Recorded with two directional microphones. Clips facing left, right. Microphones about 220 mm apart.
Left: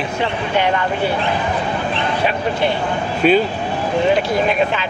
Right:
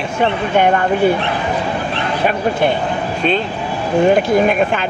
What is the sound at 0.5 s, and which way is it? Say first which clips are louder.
Speech: right 4 dB; 50° right (ahead or behind).